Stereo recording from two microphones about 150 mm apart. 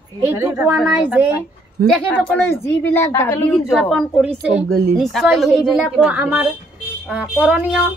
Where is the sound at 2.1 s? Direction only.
15° left (ahead or behind).